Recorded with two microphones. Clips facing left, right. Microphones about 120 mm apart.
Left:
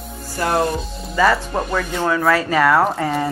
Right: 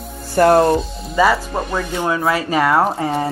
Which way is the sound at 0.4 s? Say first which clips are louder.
Right 10 dB; 55° right (ahead or behind).